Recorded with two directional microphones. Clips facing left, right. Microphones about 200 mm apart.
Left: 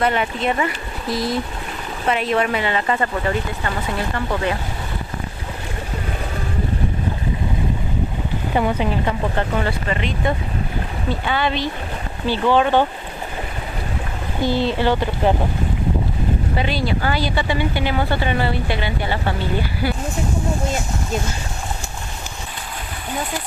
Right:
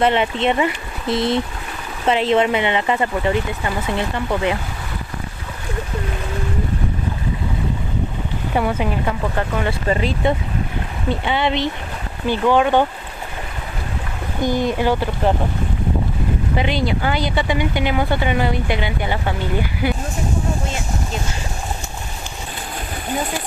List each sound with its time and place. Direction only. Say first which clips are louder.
0.0 s speech: right 3 dB; 25° right (ahead or behind)
8.5 s a woman's voice: even; centre (ahead or behind)
9.7 s speech: right 3 dB; 35° right (ahead or behind)
11.1 s speech: right 2 dB; 20° right (ahead or behind)
12.3 s speech: right 1 dB; 10° right (ahead or behind)
14.4 s speech: even; 15° right (ahead or behind)
16.5 s speech: right 4 dB; 20° right (ahead or behind)